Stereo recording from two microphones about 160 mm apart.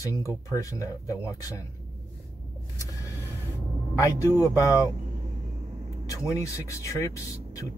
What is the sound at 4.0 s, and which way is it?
Speech, 20° left (ahead or behind).